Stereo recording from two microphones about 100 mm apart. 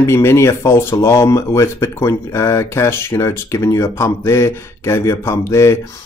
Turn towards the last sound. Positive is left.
turn(degrees=30)  # may be behind; listen again after turning